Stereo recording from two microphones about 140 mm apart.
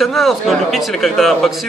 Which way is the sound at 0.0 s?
Centre (ahead or behind).